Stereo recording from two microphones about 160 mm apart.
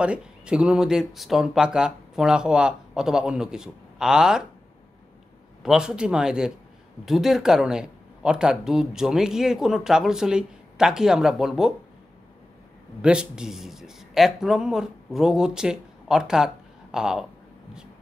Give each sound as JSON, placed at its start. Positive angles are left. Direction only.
{"t": 0.0, "sound": "speech", "side_deg": -5}
{"t": 5.6, "sound": "speech", "side_deg": -5}
{"t": 13.0, "sound": "speech", "side_deg": -5}